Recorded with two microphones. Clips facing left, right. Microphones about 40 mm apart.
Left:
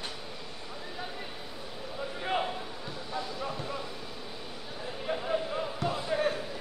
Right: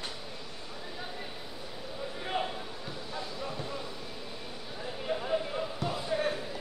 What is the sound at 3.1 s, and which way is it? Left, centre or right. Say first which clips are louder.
Basketball bounce: left 3 dB; centre.